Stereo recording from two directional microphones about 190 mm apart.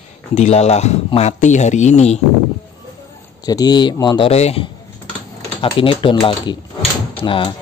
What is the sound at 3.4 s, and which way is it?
Speech, 20° left (ahead or behind).